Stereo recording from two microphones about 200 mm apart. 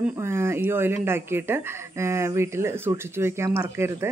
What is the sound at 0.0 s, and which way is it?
Speech, 10° right (ahead or behind).